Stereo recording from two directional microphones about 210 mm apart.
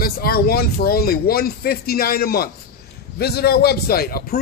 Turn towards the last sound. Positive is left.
turn(degrees=45)  # may be behind; listen again after turning